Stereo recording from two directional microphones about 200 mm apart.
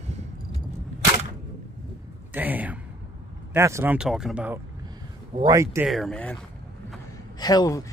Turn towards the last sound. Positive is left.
turn(degrees=20)  # may be behind; listen again after turning